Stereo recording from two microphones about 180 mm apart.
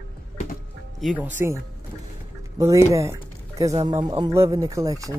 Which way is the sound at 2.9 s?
15° right (ahead or behind).